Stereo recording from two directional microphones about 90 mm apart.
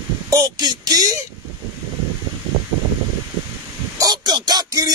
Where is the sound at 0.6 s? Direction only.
50° right (ahead or behind).